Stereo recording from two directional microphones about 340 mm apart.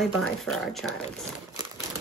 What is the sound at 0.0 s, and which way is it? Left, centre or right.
Speech, centre.